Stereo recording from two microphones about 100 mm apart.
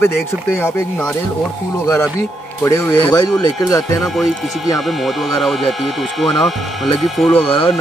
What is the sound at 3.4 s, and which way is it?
Speech, 35° left (ahead or behind).